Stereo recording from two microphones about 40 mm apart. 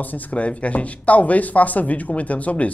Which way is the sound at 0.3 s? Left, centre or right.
Left.